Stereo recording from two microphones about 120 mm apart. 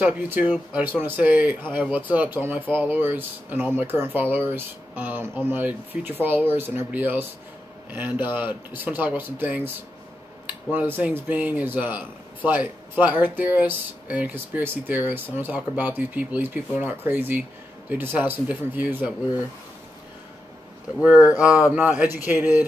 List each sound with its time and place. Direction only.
0.0 s speech: 15° right (ahead or behind)
21.4 s speech: 10° right (ahead or behind)